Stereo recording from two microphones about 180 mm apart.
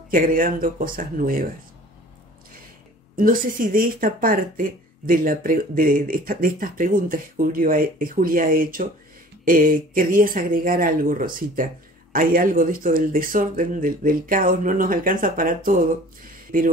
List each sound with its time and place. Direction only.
0.1 s speech: 50° right (ahead or behind)
3.2 s speech: 50° right (ahead or behind)